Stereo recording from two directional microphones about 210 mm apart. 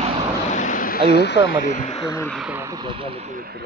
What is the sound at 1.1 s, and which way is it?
Speech, 55° left (ahead or behind).